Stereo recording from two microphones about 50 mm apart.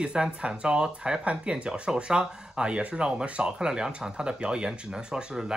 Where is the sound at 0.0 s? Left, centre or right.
Centre.